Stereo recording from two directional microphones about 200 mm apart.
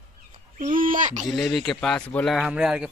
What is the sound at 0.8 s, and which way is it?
Speech, 40° right (ahead or behind).